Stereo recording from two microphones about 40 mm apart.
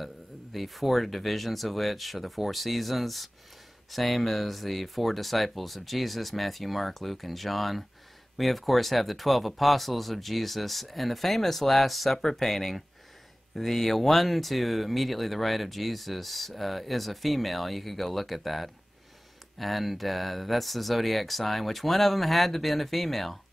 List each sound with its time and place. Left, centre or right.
0.0 s speech: centre